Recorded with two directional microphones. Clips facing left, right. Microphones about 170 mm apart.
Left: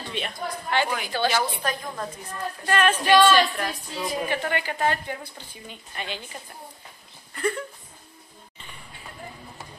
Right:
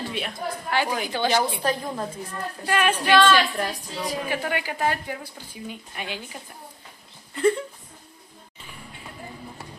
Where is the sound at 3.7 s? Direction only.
40° right (ahead or behind).